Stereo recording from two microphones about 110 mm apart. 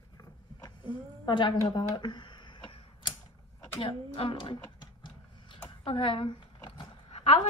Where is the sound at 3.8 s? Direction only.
50° left (ahead or behind).